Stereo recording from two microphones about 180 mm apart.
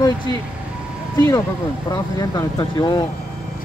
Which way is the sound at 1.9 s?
20° left (ahead or behind).